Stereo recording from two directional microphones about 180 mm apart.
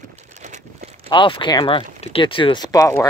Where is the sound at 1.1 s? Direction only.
25° left (ahead or behind).